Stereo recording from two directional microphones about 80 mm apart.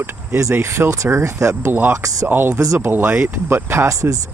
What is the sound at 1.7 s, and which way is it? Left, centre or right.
Speech, right.